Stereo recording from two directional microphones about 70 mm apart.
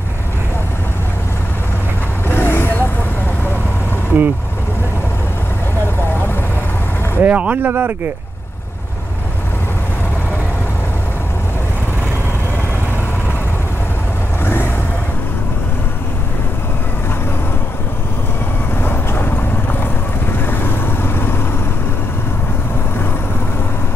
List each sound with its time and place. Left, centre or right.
2.2 s vehicle: left
4.1 s speech: right
7.2 s speech: right
14.4 s vehicle: left
18.8 s vehicle: left